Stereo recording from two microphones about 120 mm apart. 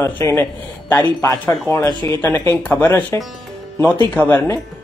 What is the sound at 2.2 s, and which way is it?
A woman's voice, 20° left (ahead or behind).